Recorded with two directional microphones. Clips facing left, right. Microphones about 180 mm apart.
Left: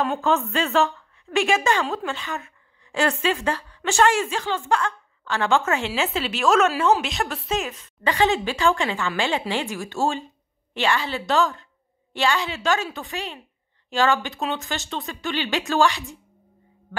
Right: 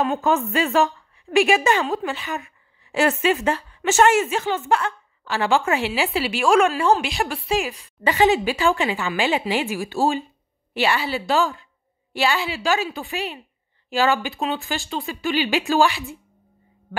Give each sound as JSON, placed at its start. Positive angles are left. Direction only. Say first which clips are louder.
{"t": 0.2, "sound": "a woman's voice", "louder": "right 2 dB", "side_deg": -15}
{"t": 8.0, "sound": "a woman's voice", "louder": "right 3 dB", "side_deg": -15}
{"t": 13.0, "sound": "speech", "louder": "right 3 dB", "side_deg": -15}
{"t": 14.1, "sound": "speech", "louder": "right 2 dB", "side_deg": 0}